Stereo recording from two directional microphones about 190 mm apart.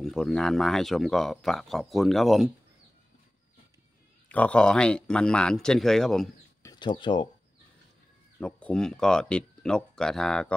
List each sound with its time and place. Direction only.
0.0 s speech: centre (ahead or behind)
4.3 s speech: 5° left (ahead or behind)
6.6 s speech: 20° left (ahead or behind)
8.4 s speech: 5° left (ahead or behind)